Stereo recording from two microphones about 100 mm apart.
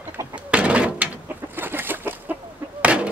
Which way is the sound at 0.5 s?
10° right (ahead or behind).